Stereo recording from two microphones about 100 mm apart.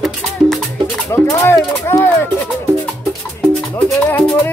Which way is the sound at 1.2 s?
30° left (ahead or behind).